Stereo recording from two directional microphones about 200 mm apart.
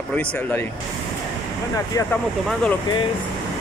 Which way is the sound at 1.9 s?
15° left (ahead or behind).